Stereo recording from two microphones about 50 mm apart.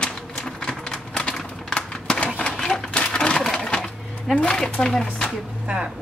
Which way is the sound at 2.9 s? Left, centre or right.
Left.